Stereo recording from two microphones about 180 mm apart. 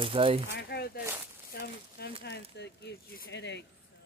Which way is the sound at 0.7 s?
60° left (ahead or behind).